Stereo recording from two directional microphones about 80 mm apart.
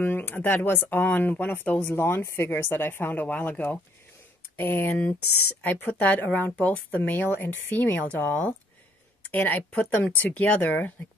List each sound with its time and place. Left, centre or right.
0.0 s speech: left